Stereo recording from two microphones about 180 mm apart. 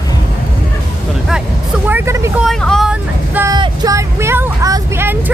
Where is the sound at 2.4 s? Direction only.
Centre (ahead or behind).